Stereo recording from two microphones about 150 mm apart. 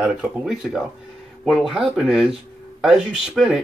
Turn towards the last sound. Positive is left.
turn(degrees=0)  # may be behind; listen again after turning